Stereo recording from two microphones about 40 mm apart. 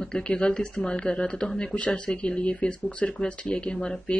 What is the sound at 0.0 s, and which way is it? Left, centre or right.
Speech, left.